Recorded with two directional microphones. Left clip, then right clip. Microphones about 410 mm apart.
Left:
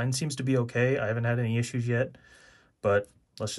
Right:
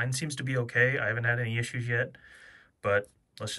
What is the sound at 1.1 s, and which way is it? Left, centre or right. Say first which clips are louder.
Speech: right 1 dB; centre.